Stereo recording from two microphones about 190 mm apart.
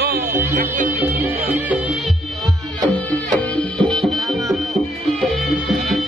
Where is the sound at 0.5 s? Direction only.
45° right (ahead or behind).